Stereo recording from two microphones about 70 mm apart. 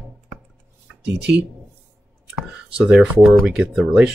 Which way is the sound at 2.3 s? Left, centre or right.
Centre.